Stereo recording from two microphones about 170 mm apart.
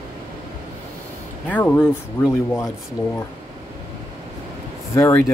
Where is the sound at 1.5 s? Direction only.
10° left (ahead or behind).